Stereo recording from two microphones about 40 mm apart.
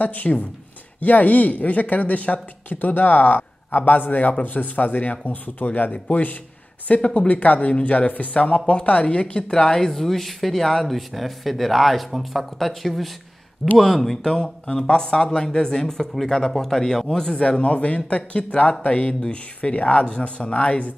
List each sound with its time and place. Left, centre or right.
0.0 s speech: left; by 9.8 s centre
9.8 s speech: centre
14.2 s speech: centre
20.5 s speech: left